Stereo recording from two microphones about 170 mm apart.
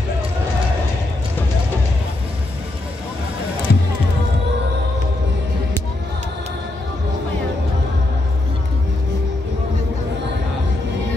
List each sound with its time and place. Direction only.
3.7 s music: 75° left (ahead or behind)